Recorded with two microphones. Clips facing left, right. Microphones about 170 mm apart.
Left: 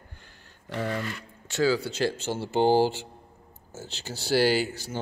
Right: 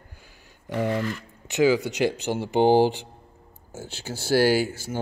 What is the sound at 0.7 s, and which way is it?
Speech, 15° right (ahead or behind).